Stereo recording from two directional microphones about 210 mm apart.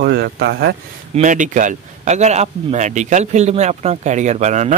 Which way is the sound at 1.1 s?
35° right (ahead or behind).